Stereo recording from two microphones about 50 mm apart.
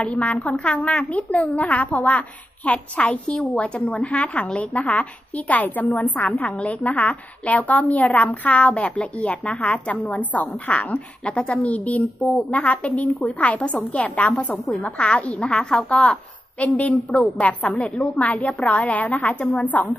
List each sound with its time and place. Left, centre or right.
0.0 s a woman's voice: left
6.4 s a woman's voice: left